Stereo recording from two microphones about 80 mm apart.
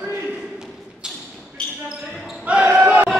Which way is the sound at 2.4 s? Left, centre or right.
Centre.